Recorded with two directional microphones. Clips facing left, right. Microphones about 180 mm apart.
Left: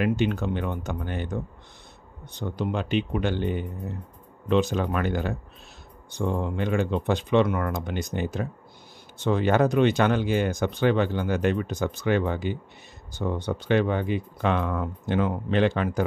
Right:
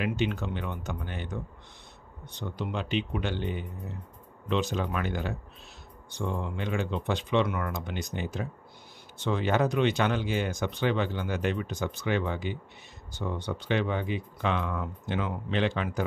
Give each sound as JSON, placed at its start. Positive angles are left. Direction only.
{"t": 0.0, "sound": "speech", "side_deg": 50}